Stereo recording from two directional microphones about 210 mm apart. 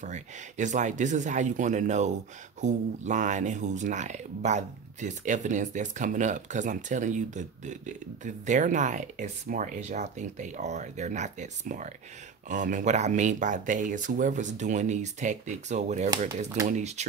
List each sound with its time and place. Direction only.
0.0 s speech: 35° right (ahead or behind)